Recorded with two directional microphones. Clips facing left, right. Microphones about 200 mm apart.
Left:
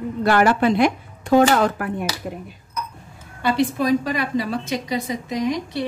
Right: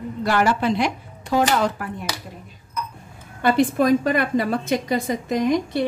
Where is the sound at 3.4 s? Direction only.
50° right (ahead or behind).